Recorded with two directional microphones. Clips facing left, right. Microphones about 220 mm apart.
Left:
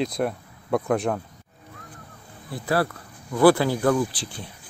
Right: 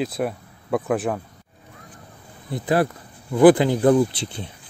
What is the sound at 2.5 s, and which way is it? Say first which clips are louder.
Speech: right 4 dB; 20° right (ahead or behind).